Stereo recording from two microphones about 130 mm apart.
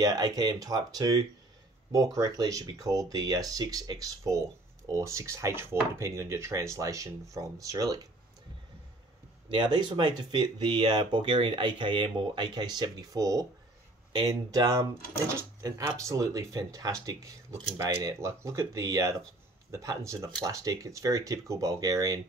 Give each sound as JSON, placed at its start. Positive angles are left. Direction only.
{"t": 0.0, "sound": "speech", "side_deg": -30}
{"t": 9.5, "sound": "speech", "side_deg": -35}